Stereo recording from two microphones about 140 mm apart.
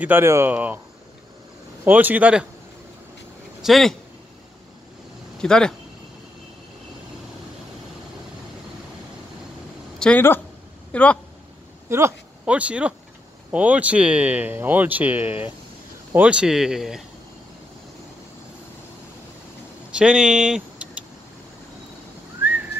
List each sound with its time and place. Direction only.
0.0 s speech: 15° right (ahead or behind)
1.9 s speech: 10° right (ahead or behind)
3.6 s speech: centre (ahead or behind)
5.4 s speech: 5° left (ahead or behind)
9.9 s a sound: 5° left (ahead or behind)
10.9 s speech: 10° left (ahead or behind)
11.9 s speech: 20° right (ahead or behind)
12.4 s speech: 10° right (ahead or behind)
19.9 s speech: 5° right (ahead or behind)